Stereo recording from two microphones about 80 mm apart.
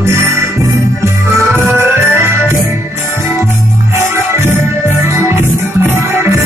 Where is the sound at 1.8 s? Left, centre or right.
Right.